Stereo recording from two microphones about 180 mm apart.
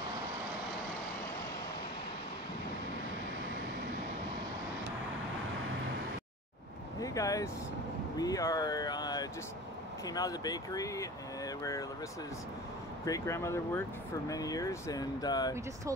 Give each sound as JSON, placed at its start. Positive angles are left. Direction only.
{"t": 7.0, "sound": "speech", "side_deg": 20}
{"t": 13.0, "sound": "speech", "side_deg": 15}